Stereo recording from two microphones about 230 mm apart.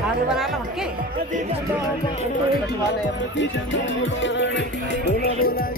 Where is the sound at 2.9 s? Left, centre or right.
Left.